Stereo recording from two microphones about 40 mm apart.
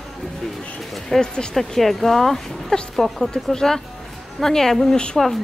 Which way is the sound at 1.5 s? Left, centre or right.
Centre.